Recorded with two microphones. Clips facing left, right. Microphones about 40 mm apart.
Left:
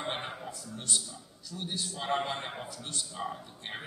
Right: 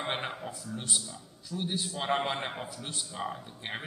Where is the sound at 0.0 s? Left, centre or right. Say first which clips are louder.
Right 2 dB; right.